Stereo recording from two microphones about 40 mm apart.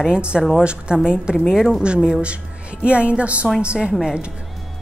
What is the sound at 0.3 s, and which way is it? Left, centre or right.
Speech, centre.